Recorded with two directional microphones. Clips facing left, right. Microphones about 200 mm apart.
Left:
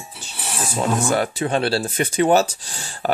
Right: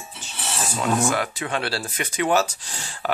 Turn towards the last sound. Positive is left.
turn(degrees=35)  # may be behind; listen again after turning